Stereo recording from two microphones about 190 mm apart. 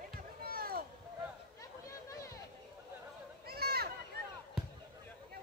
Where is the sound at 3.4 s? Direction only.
55° right (ahead or behind).